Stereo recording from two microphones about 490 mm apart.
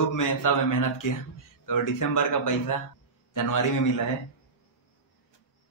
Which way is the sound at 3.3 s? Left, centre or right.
Left.